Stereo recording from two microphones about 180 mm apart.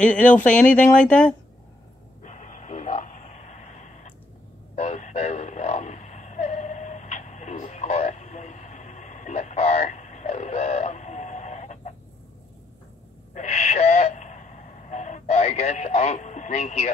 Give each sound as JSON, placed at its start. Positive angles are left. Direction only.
{"t": 0.0, "sound": "speech", "side_deg": 5}
{"t": 2.2, "sound": "radio", "side_deg": 40}
{"t": 4.7, "sound": "a sound", "side_deg": 40}
{"t": 13.3, "sound": "owl", "side_deg": 40}